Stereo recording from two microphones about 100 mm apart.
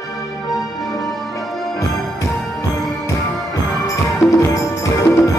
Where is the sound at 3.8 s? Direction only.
30° left (ahead or behind).